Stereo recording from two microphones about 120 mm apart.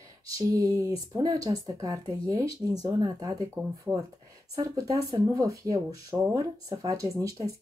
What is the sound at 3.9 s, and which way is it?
Speech, 15° right (ahead or behind).